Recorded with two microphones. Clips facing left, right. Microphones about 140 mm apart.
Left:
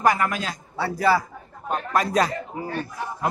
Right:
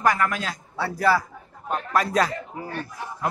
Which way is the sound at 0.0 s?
15° left (ahead or behind).